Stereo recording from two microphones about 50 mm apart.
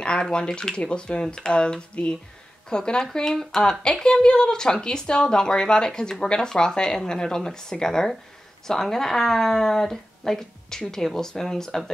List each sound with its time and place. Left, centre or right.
0.0 s speech: centre